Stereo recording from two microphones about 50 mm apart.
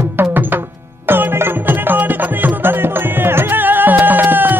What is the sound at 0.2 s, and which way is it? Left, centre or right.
Music, right.